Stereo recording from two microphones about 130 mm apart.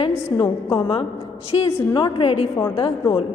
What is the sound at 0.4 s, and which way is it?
Speech, 40° left (ahead or behind).